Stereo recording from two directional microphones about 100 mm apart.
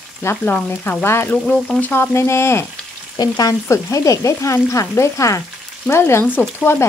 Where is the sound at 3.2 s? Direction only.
40° left (ahead or behind).